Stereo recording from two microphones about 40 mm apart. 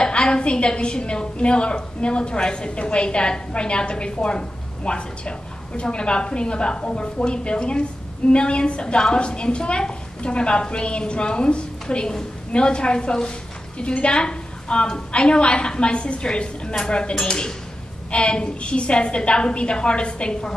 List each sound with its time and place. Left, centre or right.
0.0 s a woman's voice: left